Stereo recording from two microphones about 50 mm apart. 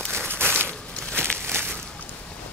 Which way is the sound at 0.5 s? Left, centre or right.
Left.